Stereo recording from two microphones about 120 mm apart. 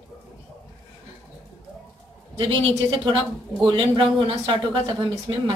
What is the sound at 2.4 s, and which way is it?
A woman's voice, 45° right (ahead or behind).